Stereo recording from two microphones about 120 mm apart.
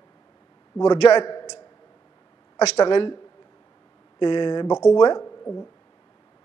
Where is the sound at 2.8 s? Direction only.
40° left (ahead or behind).